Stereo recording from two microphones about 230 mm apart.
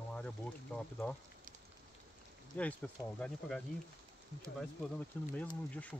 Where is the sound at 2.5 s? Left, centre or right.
Centre.